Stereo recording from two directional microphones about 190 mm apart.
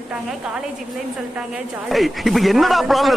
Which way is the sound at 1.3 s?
Centre (ahead or behind).